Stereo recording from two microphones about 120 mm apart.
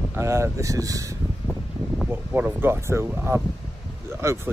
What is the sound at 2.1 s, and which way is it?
Speech, 20° right (ahead or behind).